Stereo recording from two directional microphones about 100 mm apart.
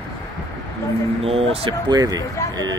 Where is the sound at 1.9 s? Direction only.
40° right (ahead or behind).